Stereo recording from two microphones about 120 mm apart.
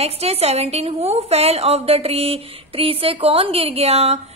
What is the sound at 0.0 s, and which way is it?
A woman's voice, 60° right (ahead or behind).